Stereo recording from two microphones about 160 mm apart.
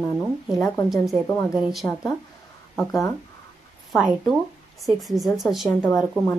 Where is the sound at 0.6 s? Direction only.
20° left (ahead or behind).